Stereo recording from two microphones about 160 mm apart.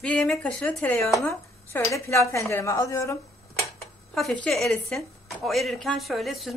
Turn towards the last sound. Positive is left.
turn(degrees=0)  # may be behind; listen again after turning